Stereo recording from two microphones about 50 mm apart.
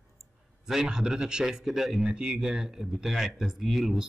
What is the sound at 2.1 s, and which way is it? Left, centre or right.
Speech, centre.